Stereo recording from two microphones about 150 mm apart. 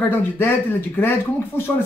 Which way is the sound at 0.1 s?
15° left (ahead or behind).